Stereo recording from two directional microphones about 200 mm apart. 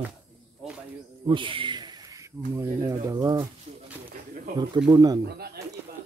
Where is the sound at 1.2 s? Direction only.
25° right (ahead or behind).